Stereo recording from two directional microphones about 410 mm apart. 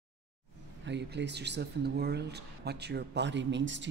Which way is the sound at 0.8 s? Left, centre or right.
Right.